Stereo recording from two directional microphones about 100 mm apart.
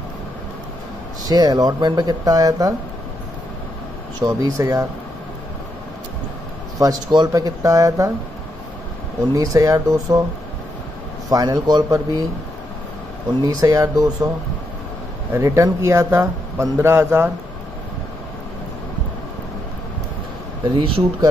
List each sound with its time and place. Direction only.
1.2 s speech: 40° right (ahead or behind)
4.2 s speech: 35° right (ahead or behind)
6.8 s speech: 45° right (ahead or behind)
9.3 s speech: 35° right (ahead or behind)
11.2 s speech: 35° right (ahead or behind)
13.4 s speech: 35° right (ahead or behind)
15.3 s speech: 30° right (ahead or behind)
20.6 s speech: 55° right (ahead or behind)